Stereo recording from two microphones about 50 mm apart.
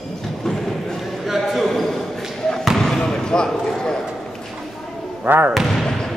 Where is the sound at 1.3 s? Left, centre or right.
Centre.